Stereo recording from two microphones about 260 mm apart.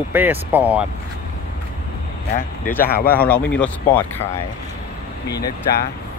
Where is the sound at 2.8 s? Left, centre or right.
Left.